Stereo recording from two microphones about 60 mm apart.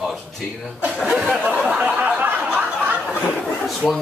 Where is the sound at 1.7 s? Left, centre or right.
Right.